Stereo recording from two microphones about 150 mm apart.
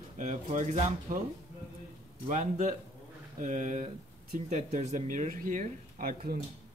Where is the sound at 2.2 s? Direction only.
55° right (ahead or behind); by 6.4 s 70° right (ahead or behind).